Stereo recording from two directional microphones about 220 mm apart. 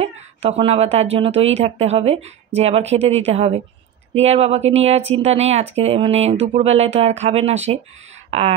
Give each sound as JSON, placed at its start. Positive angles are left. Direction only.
{"t": 0.0, "sound": "a woman's voice", "side_deg": -25}